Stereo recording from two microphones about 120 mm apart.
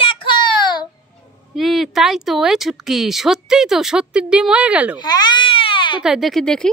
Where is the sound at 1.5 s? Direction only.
Centre (ahead or behind).